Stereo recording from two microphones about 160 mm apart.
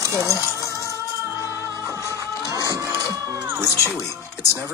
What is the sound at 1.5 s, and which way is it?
Music, 20° left (ahead or behind).